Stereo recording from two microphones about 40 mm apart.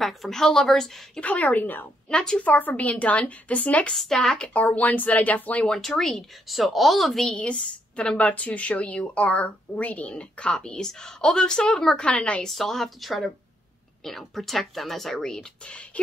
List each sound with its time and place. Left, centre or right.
0.0 s a woman's voice: centre
1.2 s speech: left
2.1 s a woman's voice: left
2.4 s speech: left
3.9 s a woman's voice: centre
4.4 s speech: left
5.7 s a woman's voice: centre
7.2 s a woman's voice: left
8.3 s speech: left; by 12.0 s centre
12.0 s a woman's voice: left
12.4 s a woman's voice: centre
15.6 s a woman's voice: left